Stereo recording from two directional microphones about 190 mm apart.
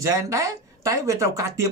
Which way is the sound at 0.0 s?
20° right (ahead or behind).